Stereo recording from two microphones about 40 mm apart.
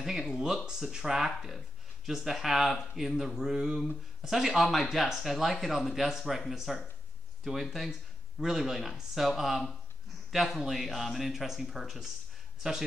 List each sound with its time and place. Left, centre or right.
0.0 s speech: centre
3.5 s speech: centre
3.8 s speech: centre